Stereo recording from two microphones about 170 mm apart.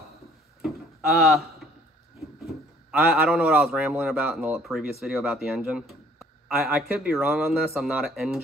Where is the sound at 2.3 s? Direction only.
Centre (ahead or behind).